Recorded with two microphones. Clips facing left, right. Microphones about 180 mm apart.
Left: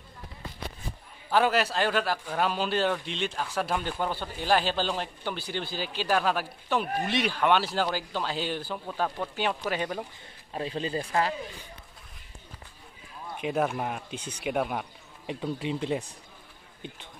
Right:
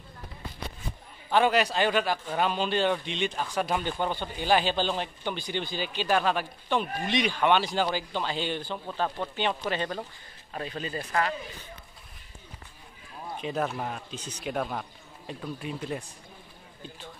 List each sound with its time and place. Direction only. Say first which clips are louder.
1.3 s speech: right 1 dB; 5° left (ahead or behind)
10.5 s speech: left 3 dB; 30° left (ahead or behind)
13.4 s speech: left 3 dB; 10° left (ahead or behind)
15.4 s speech: left 5 dB; 25° left (ahead or behind)